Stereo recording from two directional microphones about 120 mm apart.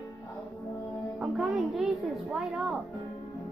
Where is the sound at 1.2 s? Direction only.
5° right (ahead or behind).